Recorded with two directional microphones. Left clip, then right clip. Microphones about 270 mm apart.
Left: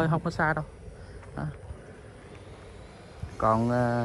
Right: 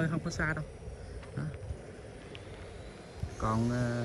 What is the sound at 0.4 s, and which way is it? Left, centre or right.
Speech, centre.